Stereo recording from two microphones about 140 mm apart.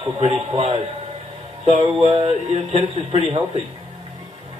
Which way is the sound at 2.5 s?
45° right (ahead or behind).